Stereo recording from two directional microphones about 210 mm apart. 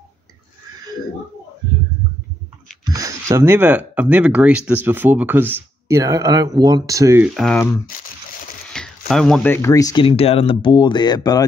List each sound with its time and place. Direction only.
2.8 s speech: 15° right (ahead or behind)
7.3 s speech: 5° left (ahead or behind)